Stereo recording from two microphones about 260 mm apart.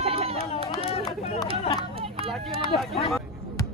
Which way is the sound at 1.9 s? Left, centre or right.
Right.